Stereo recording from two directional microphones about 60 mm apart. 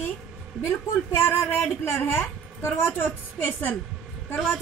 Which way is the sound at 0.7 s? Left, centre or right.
Left.